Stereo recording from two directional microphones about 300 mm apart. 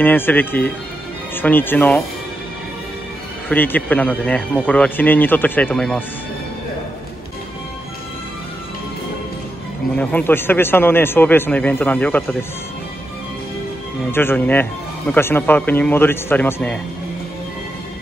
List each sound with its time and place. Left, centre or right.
0.0 s speech: centre
3.4 s speech: centre
9.9 s speech: centre
14.1 s speech: centre